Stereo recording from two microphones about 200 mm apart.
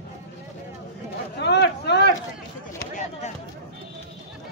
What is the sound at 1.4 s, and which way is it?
Speech, 55° left (ahead or behind).